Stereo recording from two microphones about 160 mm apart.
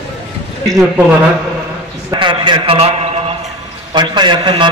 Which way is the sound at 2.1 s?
30° right (ahead or behind).